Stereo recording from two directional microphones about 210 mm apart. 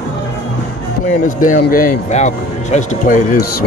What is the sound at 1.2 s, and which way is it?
Speech, 40° left (ahead or behind).